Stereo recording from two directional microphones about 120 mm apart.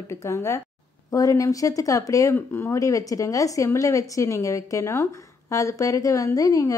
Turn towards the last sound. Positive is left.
turn(degrees=30)  # may be behind; listen again after turning